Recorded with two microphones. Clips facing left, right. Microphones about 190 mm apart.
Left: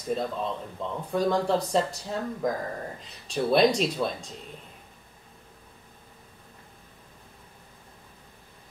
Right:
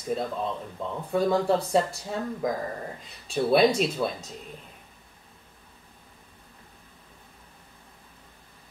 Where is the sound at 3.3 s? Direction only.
5° right (ahead or behind).